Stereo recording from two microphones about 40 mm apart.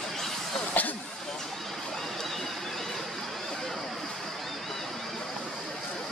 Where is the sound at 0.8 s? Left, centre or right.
Left.